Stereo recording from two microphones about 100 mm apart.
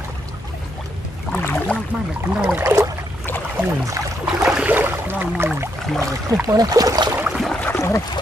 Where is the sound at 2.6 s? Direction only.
30° right (ahead or behind).